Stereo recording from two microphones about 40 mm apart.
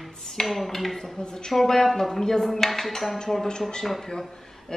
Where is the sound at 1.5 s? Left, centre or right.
Centre.